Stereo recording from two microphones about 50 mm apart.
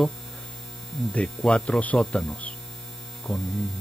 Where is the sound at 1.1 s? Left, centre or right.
Centre.